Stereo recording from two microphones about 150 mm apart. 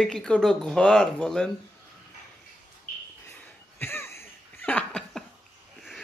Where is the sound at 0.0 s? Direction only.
5° left (ahead or behind).